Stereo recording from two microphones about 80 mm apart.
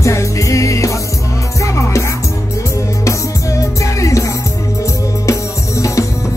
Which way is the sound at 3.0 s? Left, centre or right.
Left.